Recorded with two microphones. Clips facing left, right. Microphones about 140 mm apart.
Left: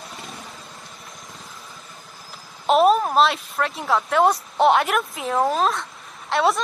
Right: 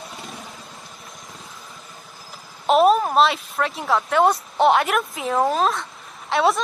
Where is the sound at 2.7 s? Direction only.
Centre (ahead or behind).